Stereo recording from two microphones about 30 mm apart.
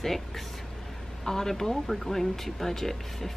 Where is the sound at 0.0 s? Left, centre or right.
Centre.